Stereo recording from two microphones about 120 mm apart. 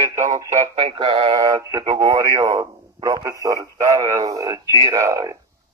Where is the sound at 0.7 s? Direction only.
50° right (ahead or behind).